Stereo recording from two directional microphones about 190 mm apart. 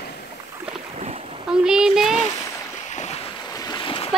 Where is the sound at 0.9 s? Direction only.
35° right (ahead or behind).